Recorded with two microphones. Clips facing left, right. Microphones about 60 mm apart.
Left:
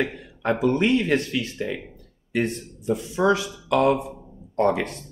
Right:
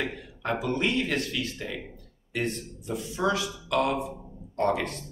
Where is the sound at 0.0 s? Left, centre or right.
Left.